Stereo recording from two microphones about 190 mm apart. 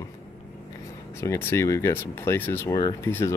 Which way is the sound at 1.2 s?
15° left (ahead or behind).